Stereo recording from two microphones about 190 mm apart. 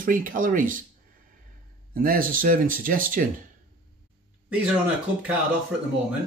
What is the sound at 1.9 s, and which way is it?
Speech, 50° right (ahead or behind).